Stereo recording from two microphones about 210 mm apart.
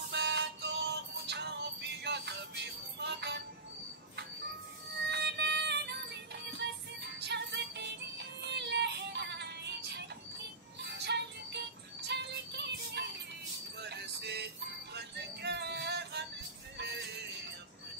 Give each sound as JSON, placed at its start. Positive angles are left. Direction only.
{"t": 0.1, "sound": "music", "side_deg": -55}
{"t": 5.0, "sound": "music", "side_deg": -55}